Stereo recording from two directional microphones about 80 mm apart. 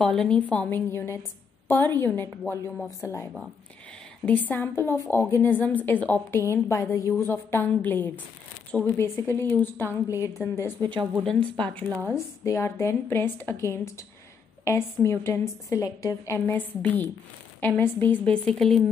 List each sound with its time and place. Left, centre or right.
0.0 s a woman's voice: centre
0.7 s a woman's voice: left
3.0 s a woman's voice: left
4.3 s speech: left
6.3 s a woman's voice: left
10.1 s a woman's voice: left
10.8 s speech: right
11.2 s a woman's voice: centre
12.4 s a woman's voice: left
15.8 s a woman's voice: left
16.3 s speech: left
18.3 s a woman's voice: centre